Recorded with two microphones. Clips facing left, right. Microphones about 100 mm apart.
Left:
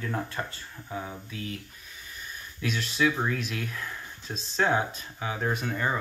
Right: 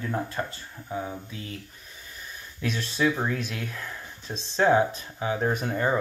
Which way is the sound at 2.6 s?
35° right (ahead or behind).